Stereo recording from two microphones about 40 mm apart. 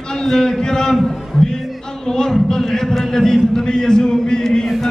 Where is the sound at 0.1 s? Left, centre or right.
Centre.